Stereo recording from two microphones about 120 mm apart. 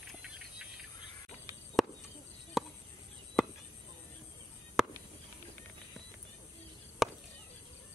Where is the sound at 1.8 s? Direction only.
Centre (ahead or behind).